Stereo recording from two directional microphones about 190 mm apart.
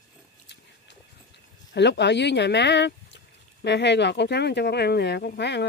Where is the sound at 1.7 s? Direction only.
65° left (ahead or behind).